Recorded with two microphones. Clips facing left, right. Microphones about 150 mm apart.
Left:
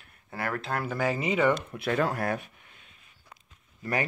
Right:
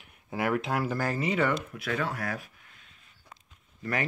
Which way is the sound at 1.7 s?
40° left (ahead or behind).